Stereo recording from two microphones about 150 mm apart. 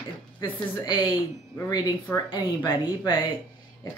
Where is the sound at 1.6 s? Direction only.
25° left (ahead or behind).